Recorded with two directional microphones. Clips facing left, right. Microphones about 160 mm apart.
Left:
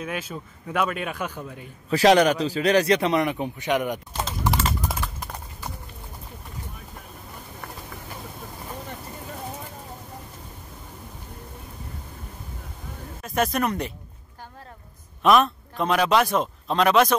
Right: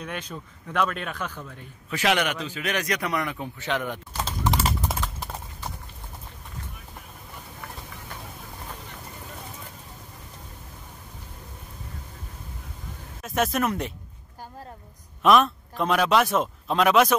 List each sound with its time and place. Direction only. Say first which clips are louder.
0.0 s a man's voice: left 3 dB; 5° left (ahead or behind)
1.9 s a man's voice: left 8 dB; 35° left (ahead or behind); by 4.2 s 15° left (ahead or behind)
4.6 s typing: even; 5° right (ahead or behind)
13.2 s speech: left 1 dB; centre (ahead or behind)
15.2 s speech: even; centre (ahead or behind)